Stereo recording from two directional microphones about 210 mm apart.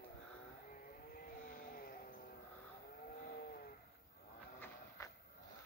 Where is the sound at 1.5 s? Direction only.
40° left (ahead or behind).